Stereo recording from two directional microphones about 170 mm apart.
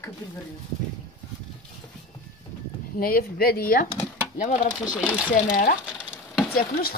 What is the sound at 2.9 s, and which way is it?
Speech, 60° left (ahead or behind).